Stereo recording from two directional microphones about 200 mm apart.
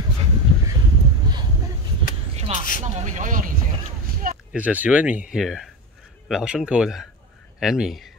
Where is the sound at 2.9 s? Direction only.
35° right (ahead or behind).